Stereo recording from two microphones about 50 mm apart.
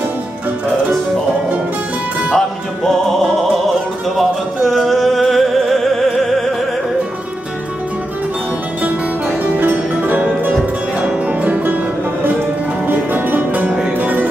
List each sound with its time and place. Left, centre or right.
2.3 s music: centre
9.6 s music: right
10.5 s music: right
12.8 s music: right